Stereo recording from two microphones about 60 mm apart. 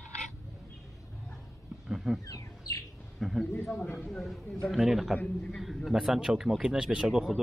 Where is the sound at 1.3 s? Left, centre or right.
Centre.